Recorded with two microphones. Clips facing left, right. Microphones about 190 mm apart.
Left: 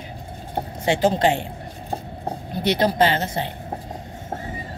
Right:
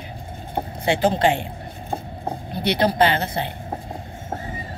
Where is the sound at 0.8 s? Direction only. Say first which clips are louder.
Even; 40° left (ahead or behind).